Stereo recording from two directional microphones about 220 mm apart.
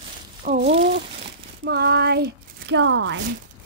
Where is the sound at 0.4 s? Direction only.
40° right (ahead or behind).